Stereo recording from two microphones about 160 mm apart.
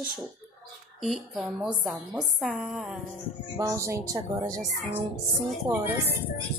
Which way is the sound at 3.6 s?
20° right (ahead or behind).